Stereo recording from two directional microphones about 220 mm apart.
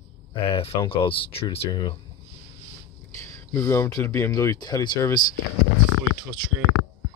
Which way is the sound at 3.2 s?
10° left (ahead or behind).